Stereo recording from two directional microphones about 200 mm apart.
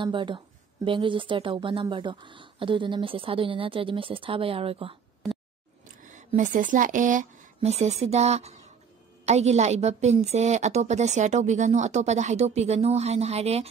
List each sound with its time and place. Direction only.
0.0 s a woman's voice: 25° right (ahead or behind)
6.0 s a woman's voice: 40° right (ahead or behind)